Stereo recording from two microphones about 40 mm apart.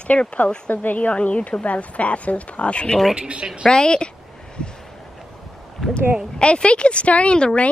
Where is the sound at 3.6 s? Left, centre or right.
Centre.